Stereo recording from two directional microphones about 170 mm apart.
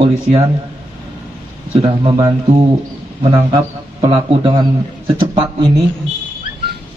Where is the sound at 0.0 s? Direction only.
35° right (ahead or behind).